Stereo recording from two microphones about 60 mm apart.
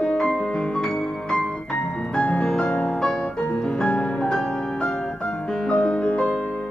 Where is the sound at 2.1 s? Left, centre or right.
Centre.